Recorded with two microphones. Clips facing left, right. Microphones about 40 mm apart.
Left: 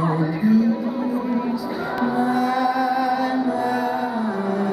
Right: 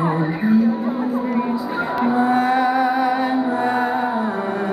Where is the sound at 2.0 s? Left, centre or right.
Right.